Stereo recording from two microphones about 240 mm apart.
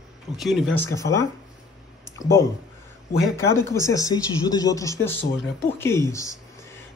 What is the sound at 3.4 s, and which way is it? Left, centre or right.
Speech, centre.